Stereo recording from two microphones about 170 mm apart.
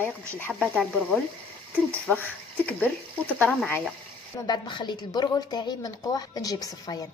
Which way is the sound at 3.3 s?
10° left (ahead or behind).